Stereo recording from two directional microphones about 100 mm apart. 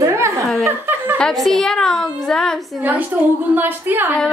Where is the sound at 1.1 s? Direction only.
5° left (ahead or behind).